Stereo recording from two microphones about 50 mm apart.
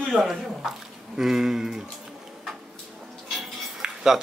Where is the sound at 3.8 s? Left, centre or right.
Centre.